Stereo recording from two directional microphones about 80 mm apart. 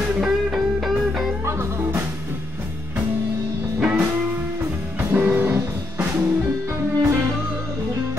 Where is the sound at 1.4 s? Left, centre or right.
Right.